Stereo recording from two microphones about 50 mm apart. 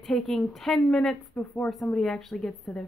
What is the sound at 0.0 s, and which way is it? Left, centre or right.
Speech, centre.